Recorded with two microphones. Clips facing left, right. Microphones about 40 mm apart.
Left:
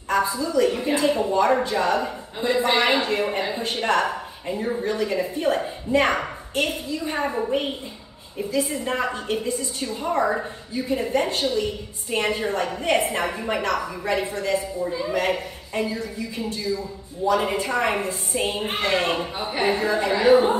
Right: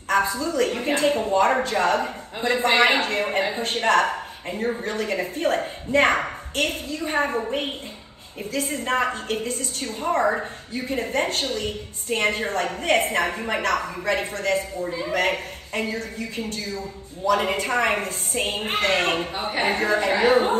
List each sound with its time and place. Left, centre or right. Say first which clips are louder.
0.1 s a woman's voice: even; right
3.3 s a woman's voice: right 1 dB; right
4.5 s speech: even; right
4.8 s a woman's voice: left 2 dB; right
8.5 s a woman's voice: even; right
14.9 s a woman's voice: left 1 dB; right
15.1 s a woman's voice: right 3 dB; right